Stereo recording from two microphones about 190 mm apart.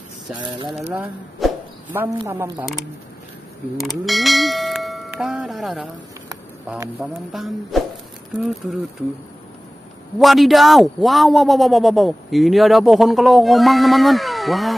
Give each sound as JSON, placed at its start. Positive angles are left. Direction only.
{"t": 0.7, "sound": "speech", "side_deg": -5}
{"t": 1.4, "sound": "a sound", "side_deg": -10}
{"t": 2.1, "sound": "speech", "side_deg": -15}
{"t": 3.7, "sound": "speech", "side_deg": 0}
{"t": 7.0, "sound": "a man's voice", "side_deg": -5}
{"t": 10.1, "sound": "a man's voice", "side_deg": 0}